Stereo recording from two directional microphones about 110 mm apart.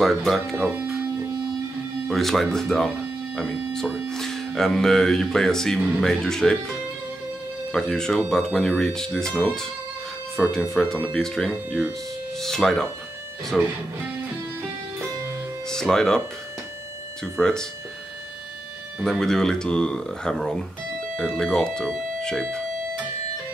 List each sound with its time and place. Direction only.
0.0 s speech: centre (ahead or behind)
0.6 s speech: 15° right (ahead or behind)
2.0 s speech: centre (ahead or behind)
15.7 s speech: 5° left (ahead or behind)
17.2 s speech: 5° left (ahead or behind)
19.0 s speech: 5° left (ahead or behind)